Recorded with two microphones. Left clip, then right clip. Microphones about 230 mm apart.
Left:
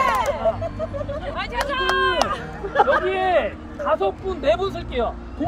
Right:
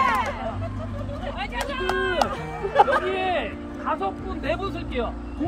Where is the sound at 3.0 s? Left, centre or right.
Centre.